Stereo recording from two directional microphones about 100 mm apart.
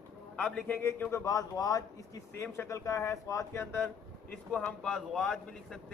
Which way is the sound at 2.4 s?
25° left (ahead or behind).